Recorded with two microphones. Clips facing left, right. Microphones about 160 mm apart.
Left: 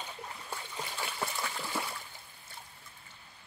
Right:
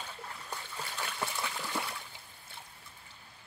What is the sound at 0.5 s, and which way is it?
Splash, 10° left (ahead or behind).